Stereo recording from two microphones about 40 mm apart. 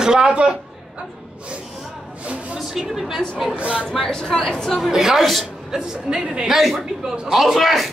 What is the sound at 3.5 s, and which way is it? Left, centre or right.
Speech, right.